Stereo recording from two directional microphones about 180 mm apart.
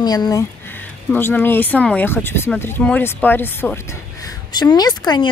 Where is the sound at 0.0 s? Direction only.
20° left (ahead or behind).